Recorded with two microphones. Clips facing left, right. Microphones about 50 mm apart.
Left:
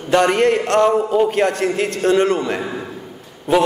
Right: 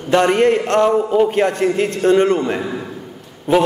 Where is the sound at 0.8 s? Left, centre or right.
Centre.